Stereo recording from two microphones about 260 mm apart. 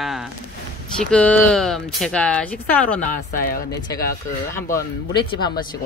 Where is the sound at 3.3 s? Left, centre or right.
Left.